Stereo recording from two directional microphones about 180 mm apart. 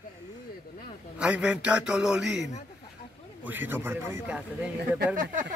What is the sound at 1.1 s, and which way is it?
A man's voice, 5° right (ahead or behind).